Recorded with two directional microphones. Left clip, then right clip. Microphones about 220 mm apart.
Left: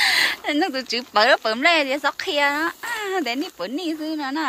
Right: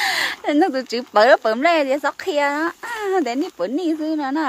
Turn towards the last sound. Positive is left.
turn(degrees=-30)  # may be behind; listen again after turning